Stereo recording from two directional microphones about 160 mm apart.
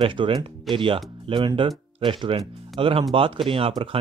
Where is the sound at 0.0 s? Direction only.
30° right (ahead or behind).